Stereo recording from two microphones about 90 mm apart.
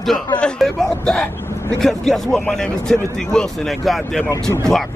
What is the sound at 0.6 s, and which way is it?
Speech, 5° left (ahead or behind).